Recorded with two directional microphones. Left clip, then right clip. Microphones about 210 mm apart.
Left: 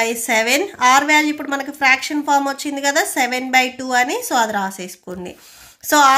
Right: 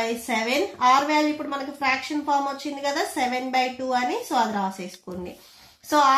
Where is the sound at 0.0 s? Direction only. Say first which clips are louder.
Left 8 dB; 55° left (ahead or behind).